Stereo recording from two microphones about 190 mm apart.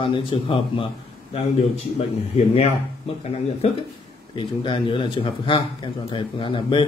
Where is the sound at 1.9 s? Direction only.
35° left (ahead or behind).